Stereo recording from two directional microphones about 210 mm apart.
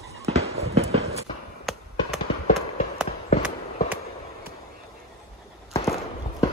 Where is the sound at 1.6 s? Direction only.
Centre (ahead or behind).